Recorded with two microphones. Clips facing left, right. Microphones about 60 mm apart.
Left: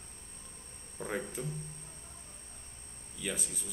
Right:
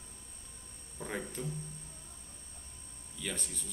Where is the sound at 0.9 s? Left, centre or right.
Centre.